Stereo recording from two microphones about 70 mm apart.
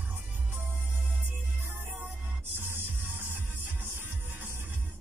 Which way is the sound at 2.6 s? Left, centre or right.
Right.